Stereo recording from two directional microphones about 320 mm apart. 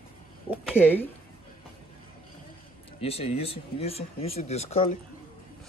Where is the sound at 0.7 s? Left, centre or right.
Centre.